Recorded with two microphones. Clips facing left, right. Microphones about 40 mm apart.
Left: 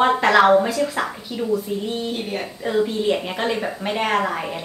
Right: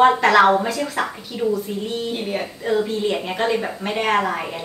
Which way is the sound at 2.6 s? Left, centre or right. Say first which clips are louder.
Even; centre.